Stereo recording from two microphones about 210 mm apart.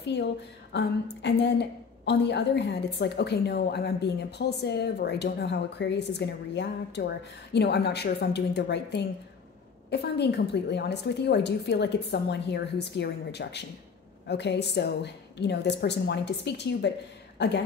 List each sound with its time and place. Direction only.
0.0 s speech: 55° left (ahead or behind)
0.7 s a sound: 55° left (ahead or behind)
2.0 s a woman's voice: 55° left (ahead or behind)